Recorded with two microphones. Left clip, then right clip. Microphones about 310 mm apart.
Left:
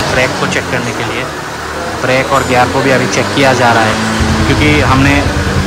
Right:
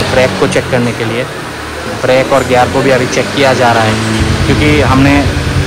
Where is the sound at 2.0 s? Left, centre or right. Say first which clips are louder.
Right 3 dB; centre.